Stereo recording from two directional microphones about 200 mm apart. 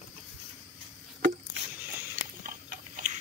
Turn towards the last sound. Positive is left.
turn(degrees=-40)  # may be behind; listen again after turning